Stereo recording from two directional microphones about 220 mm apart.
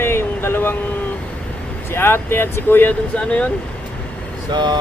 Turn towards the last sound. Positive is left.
turn(degrees=-20)  # may be behind; listen again after turning